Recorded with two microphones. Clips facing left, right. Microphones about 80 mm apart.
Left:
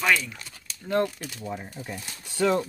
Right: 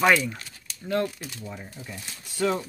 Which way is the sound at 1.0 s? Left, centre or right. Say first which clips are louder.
Left 1 dB; left.